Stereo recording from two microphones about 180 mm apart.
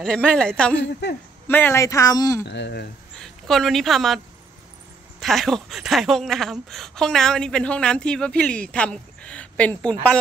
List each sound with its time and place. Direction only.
0.0 s a woman's voice: 5° left (ahead or behind); by 2.4 s 20° left (ahead or behind)
2.4 s speech: 70° left (ahead or behind)
3.2 s a woman's voice: centre (ahead or behind)
5.2 s a woman's voice: centre (ahead or behind)